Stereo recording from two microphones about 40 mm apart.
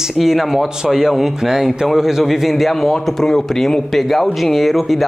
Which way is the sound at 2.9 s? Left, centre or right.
Centre.